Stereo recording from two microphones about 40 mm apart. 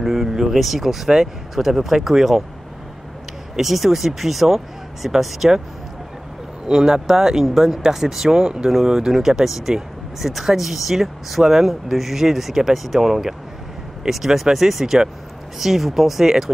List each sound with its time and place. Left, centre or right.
0.0 s vehicle: centre
0.3 s speech: centre
3.5 s speech: centre
6.7 s speech: centre